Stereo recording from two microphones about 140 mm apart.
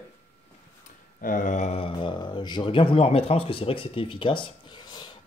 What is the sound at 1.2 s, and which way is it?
Speech, 70° left (ahead or behind).